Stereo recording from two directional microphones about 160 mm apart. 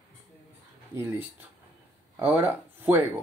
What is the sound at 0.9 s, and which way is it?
Speech, 10° right (ahead or behind).